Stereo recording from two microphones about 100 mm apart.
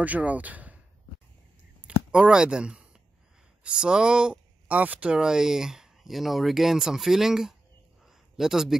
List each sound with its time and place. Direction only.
0.0 s speech: 15° right (ahead or behind)
1.8 s speech: 10° right (ahead or behind)
8.0 s a sound: 5° right (ahead or behind)